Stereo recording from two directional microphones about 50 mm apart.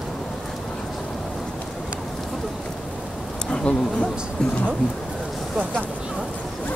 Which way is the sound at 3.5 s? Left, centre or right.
Centre.